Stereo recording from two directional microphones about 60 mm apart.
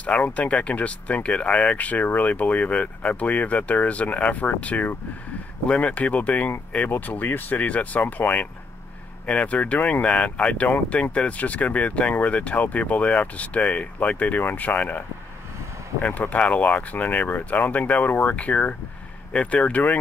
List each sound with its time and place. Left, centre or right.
0.0 s speech: left
6.9 s speech: left